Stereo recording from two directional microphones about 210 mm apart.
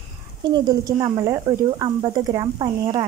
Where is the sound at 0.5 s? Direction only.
20° right (ahead or behind).